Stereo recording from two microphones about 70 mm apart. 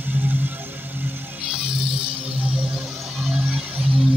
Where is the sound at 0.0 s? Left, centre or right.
Right.